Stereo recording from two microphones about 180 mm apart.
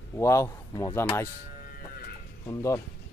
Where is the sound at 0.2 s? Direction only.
15° left (ahead or behind).